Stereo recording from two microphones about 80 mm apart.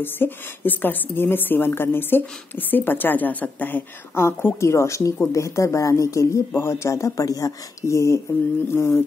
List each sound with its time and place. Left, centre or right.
0.0 s a woman's voice: left